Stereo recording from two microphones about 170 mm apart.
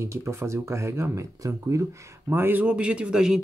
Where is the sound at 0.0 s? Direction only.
15° right (ahead or behind).